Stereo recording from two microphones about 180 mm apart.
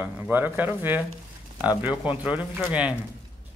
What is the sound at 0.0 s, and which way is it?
Speech, 10° right (ahead or behind).